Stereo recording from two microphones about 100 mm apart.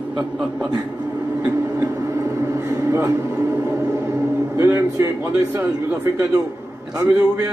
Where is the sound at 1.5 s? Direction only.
25° right (ahead or behind).